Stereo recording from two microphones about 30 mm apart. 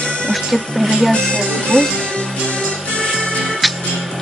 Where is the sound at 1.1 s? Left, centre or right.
Left.